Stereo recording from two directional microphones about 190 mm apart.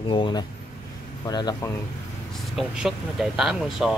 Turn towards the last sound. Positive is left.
turn(degrees=0)  # may be behind; listen again after turning